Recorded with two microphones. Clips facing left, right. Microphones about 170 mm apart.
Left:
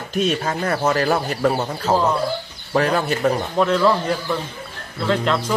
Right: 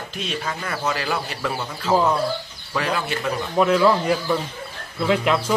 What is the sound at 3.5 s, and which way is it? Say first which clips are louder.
A man's voice: right 3 dB; 5° right (ahead or behind).